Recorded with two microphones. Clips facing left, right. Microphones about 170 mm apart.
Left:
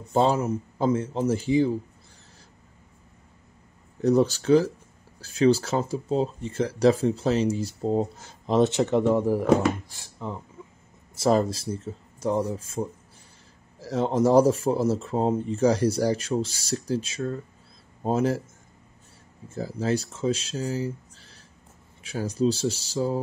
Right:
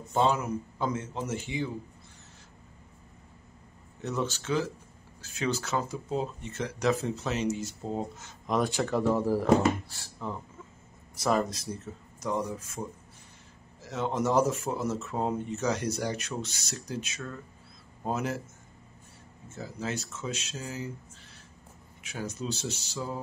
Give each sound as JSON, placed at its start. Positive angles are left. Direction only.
{"t": 0.1, "sound": "speech", "side_deg": 35}
{"t": 4.0, "sound": "speech", "side_deg": 35}
{"t": 11.1, "sound": "speech", "side_deg": 30}
{"t": 19.5, "sound": "speech", "side_deg": 35}